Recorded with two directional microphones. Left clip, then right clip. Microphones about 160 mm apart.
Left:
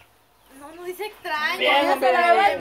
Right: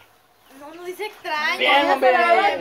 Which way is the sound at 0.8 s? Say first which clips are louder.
Right 1 dB; centre (ahead or behind).